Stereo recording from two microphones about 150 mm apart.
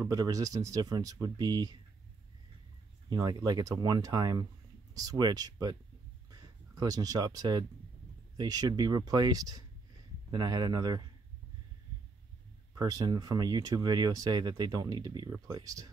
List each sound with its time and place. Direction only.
0.0 s speech: 25° right (ahead or behind)
3.1 s speech: 30° right (ahead or behind)
12.7 s speech: 25° right (ahead or behind)